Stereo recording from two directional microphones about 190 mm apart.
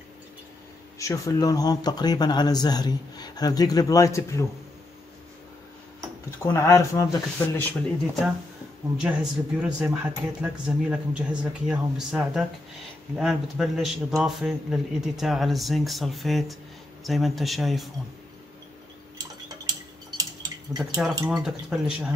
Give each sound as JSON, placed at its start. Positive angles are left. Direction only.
{"t": 0.9, "sound": "speech", "side_deg": 15}
{"t": 6.4, "sound": "speech", "side_deg": 15}
{"t": 9.0, "sound": "speech", "side_deg": -5}
{"t": 21.3, "sound": "speech", "side_deg": -5}